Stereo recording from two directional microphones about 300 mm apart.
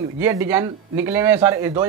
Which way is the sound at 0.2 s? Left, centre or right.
Centre.